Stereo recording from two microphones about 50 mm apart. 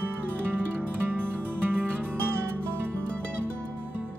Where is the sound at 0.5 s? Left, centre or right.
Right.